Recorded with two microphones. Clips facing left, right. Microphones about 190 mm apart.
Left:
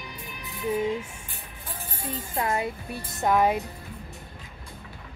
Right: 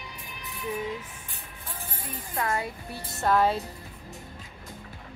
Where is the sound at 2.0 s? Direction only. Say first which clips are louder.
Left 3 dB; 25° left (ahead or behind).